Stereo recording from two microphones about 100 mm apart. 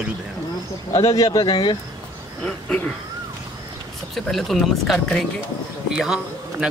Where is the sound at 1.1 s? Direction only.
40° left (ahead or behind).